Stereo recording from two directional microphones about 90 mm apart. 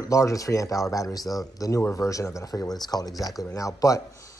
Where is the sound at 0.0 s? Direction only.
40° left (ahead or behind).